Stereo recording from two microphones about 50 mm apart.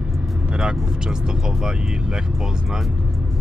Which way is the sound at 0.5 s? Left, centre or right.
Centre.